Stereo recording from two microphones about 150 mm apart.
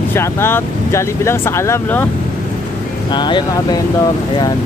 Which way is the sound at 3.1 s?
30° left (ahead or behind).